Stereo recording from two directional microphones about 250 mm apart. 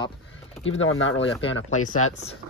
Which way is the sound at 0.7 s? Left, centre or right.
Left.